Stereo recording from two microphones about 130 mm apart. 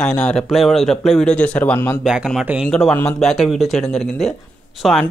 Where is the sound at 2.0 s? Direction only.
5° right (ahead or behind).